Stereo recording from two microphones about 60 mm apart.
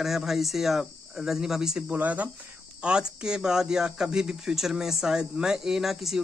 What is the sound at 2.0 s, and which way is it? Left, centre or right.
Speech, right.